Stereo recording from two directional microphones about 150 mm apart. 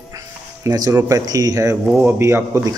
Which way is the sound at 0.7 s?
25° right (ahead or behind).